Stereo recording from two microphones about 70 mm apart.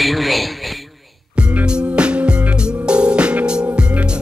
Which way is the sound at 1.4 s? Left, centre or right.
Centre.